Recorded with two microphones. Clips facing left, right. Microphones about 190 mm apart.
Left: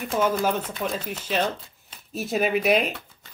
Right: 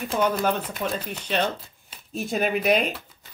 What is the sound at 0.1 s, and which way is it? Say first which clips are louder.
Speech: even; centre (ahead or behind).